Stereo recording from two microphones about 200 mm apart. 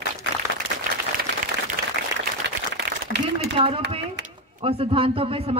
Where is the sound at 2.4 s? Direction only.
55° right (ahead or behind).